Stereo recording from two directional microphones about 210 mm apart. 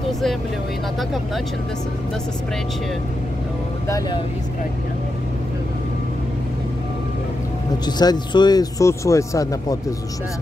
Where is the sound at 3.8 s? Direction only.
15° left (ahead or behind).